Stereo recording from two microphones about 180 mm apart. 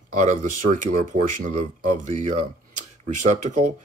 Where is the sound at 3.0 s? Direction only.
45° right (ahead or behind).